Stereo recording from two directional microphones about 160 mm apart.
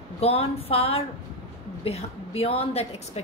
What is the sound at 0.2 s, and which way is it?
A woman's voice, 40° left (ahead or behind).